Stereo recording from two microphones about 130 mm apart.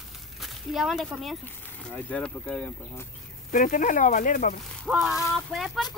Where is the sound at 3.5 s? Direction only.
90° left.